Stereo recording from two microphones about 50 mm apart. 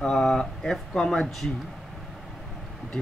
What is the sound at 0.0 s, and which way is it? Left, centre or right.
Speech, centre.